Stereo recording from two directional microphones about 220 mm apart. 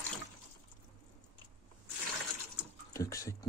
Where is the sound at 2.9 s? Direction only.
15° left (ahead or behind).